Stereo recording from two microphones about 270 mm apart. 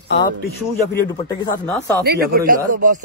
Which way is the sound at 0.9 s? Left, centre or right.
Centre.